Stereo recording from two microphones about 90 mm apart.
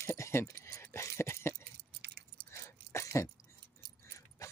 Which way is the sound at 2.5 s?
35° left (ahead or behind).